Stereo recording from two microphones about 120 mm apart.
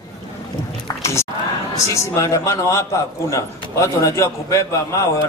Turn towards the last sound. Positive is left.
turn(degrees=25)  # may be behind; listen again after turning